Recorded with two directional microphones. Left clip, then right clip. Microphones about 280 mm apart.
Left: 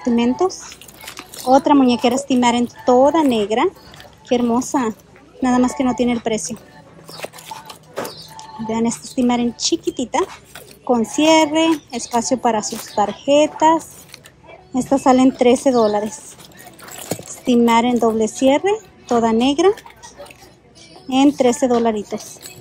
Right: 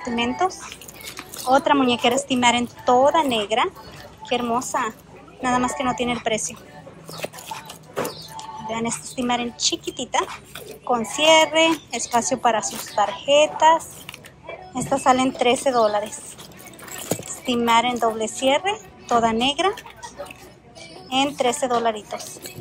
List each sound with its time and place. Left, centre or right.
0.0 s speech: centre
1.0 s a sound: centre
1.5 s speech: centre
8.4 s speech: left
17.5 s speech: left
21.1 s speech: left